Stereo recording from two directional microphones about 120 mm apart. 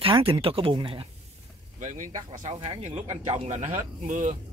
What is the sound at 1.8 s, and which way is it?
Speech, 90° right.